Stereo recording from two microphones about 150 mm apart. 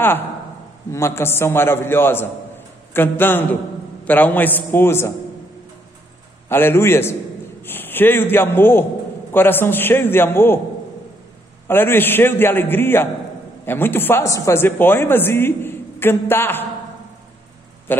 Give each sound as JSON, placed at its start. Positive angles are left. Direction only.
{"t": 0.9, "sound": "a man's voice", "side_deg": 15}
{"t": 6.5, "sound": "a man's voice", "side_deg": 15}
{"t": 11.6, "sound": "a man's voice", "side_deg": 15}